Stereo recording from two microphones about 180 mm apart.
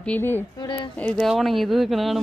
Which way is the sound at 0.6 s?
25° left (ahead or behind).